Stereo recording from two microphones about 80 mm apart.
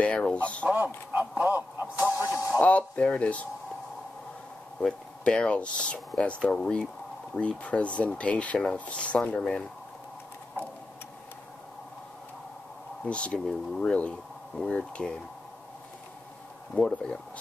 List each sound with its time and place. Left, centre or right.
0.0 s speech: centre
0.7 s speech: centre
1.4 s a sound: right
2.6 s speech: centre
4.8 s speech: centre
13.0 s speech: centre
16.7 s speech: centre